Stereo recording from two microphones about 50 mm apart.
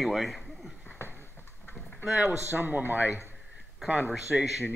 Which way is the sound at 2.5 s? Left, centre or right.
Right.